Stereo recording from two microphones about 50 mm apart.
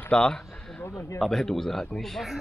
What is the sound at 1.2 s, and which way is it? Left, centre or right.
Speech, centre.